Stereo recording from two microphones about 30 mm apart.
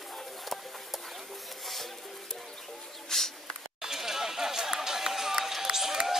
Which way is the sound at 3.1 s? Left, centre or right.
Centre.